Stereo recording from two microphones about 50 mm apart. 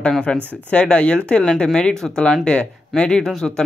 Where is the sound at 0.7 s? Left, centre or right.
Left.